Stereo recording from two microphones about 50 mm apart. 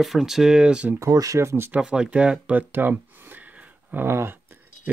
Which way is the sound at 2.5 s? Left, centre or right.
Right.